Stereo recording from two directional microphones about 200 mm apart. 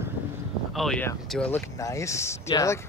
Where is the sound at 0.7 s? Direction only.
5° left (ahead or behind).